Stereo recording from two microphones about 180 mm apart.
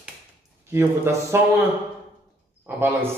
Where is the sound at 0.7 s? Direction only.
15° right (ahead or behind).